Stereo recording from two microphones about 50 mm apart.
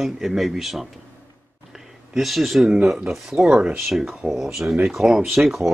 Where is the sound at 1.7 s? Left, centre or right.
Centre.